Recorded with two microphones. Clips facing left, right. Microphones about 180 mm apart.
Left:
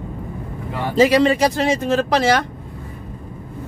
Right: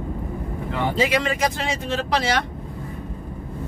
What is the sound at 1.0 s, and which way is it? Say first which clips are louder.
Speech: left 10 dB; 35° left (ahead or behind).